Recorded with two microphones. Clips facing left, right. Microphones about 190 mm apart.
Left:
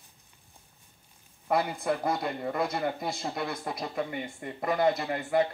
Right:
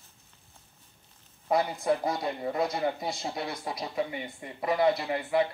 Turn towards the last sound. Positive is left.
turn(degrees=45)  # may be behind; listen again after turning